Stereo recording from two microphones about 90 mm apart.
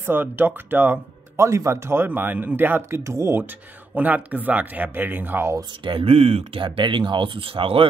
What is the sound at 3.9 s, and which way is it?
Speech, 20° right (ahead or behind).